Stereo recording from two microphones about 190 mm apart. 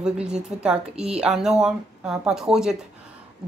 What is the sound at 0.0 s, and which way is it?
A woman's voice, 5° right (ahead or behind).